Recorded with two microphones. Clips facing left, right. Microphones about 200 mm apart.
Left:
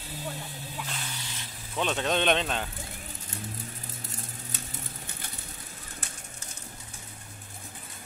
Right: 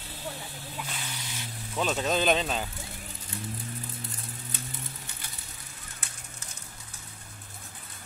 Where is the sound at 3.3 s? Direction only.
45° left (ahead or behind).